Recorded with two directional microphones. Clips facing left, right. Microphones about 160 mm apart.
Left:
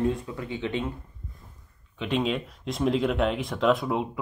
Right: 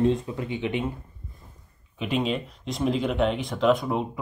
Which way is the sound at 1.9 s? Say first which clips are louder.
Even; 5° right (ahead or behind).